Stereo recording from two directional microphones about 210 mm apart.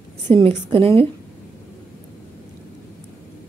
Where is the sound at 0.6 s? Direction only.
25° right (ahead or behind).